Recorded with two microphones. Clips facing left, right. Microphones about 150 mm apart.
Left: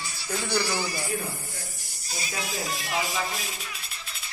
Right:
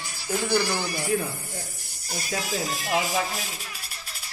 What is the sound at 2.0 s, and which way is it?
Speech, 55° right (ahead or behind).